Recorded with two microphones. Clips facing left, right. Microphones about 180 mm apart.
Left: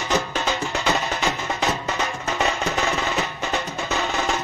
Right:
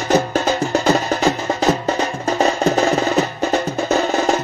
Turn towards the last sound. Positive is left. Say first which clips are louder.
# right 8 dB
turn(degrees=-35)  # may be behind; listen again after turning